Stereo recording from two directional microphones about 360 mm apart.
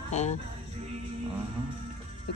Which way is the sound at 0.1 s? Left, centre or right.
Centre.